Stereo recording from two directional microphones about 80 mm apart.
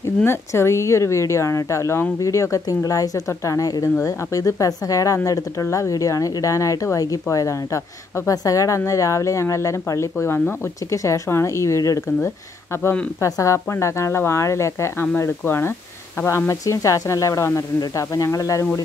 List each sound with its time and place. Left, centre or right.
0.0 s speech: left